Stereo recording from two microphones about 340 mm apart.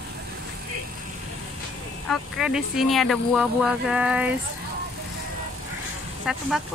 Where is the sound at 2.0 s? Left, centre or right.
Centre.